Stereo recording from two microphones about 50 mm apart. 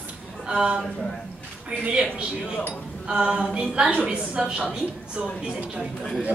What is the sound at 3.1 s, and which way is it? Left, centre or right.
A woman's voice, right.